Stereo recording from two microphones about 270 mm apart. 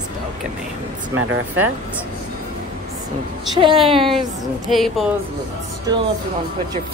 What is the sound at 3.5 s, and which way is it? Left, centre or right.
Speech, centre.